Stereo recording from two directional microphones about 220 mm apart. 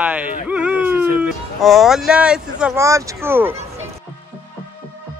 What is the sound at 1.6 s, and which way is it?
Speech, centre (ahead or behind).